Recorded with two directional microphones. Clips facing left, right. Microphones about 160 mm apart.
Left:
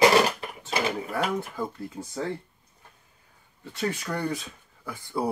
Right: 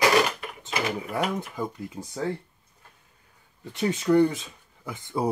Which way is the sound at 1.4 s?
15° right (ahead or behind).